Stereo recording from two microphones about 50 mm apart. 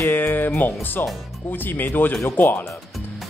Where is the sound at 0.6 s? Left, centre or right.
Left.